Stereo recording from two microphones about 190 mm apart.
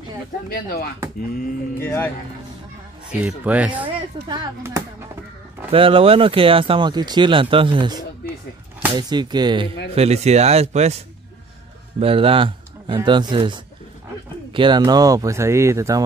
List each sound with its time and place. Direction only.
0.5 s speech: 50° left (ahead or behind)
1.8 s speech: 15° left (ahead or behind)
3.1 s speech: 5° right (ahead or behind)
3.8 s speech: 25° right (ahead or behind)
9.9 s speech: 35° right (ahead or behind)
12.0 s speech: 30° right (ahead or behind)